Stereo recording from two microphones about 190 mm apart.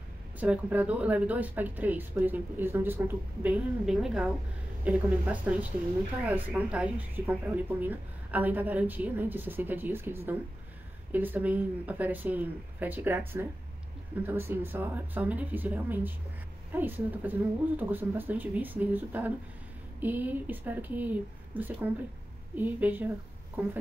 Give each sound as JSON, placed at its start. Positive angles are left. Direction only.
{"t": 0.4, "sound": "speech", "side_deg": -10}